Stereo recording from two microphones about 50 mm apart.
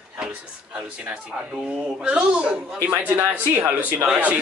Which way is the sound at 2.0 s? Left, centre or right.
Centre.